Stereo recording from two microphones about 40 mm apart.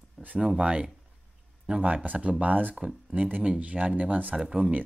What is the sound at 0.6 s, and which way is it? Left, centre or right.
Speech, right.